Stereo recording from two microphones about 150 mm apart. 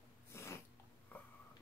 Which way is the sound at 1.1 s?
10° left (ahead or behind).